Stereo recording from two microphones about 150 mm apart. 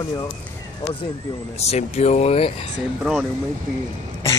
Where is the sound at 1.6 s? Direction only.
45° left (ahead or behind).